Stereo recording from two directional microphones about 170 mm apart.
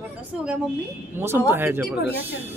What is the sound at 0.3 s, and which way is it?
Speech, 5° right (ahead or behind).